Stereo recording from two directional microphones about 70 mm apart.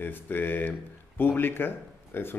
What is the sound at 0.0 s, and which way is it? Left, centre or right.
Speech, left.